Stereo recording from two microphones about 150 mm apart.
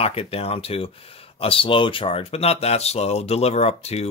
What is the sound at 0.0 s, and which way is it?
Speech, 40° left (ahead or behind).